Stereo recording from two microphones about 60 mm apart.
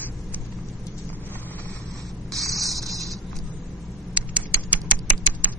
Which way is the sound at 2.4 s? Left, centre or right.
Centre.